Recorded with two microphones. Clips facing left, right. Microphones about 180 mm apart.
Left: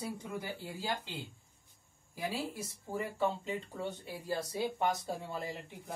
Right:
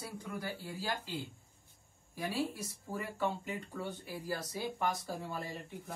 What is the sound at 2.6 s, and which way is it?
Speech, 25° left (ahead or behind).